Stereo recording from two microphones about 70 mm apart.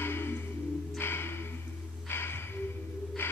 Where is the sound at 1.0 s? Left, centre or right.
Left.